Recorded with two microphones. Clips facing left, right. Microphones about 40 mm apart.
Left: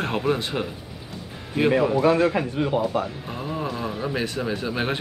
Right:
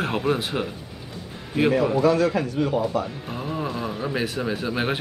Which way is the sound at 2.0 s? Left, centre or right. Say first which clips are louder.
Even; left.